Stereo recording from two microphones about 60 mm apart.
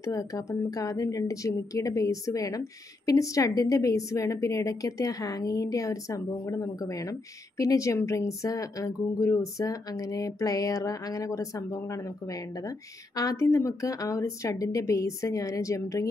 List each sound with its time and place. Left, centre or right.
0.0 s a woman's voice: left
13.4 s a woman's voice: left
14.2 s a woman's voice: left